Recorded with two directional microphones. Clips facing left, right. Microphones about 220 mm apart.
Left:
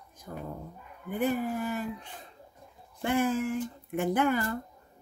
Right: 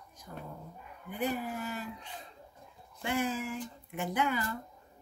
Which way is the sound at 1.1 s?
50° left (ahead or behind).